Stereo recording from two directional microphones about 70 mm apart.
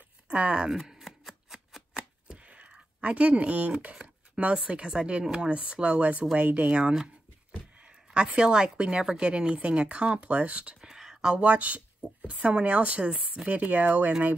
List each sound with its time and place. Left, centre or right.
0.3 s a woman's voice: centre
0.7 s shuffling cards: centre
6.3 s a woman's voice: centre